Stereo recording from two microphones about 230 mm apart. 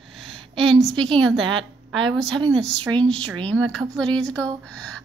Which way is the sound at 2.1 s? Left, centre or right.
Centre.